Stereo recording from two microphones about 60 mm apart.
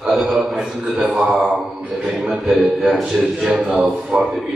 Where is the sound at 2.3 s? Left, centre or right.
Centre.